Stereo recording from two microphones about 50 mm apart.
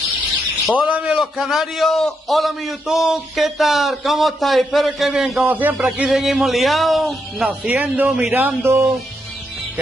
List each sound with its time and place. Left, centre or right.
0.7 s a man's voice: right; by 2.7 s centre
2.9 s a man's voice: centre
5.5 s a man's voice: right
5.8 s speech: right
6.1 s a man's voice: centre
7.4 s speech: right
8.1 s a man's voice: centre
8.6 s speech: right